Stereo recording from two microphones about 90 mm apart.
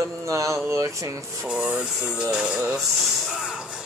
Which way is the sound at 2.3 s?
10° right (ahead or behind).